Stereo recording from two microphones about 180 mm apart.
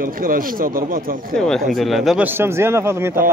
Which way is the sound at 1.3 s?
Centre (ahead or behind).